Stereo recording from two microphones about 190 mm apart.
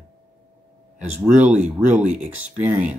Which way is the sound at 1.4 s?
5° right (ahead or behind).